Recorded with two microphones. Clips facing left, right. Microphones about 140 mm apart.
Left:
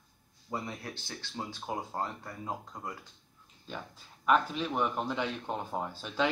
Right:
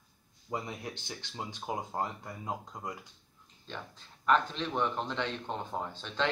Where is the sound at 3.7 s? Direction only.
10° left (ahead or behind).